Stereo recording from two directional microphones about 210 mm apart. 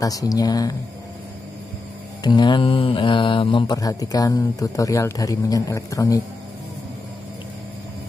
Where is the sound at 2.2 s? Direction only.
20° left (ahead or behind).